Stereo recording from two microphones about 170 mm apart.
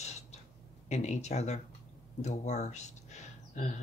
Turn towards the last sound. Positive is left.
turn(degrees=45)  # may be behind; listen again after turning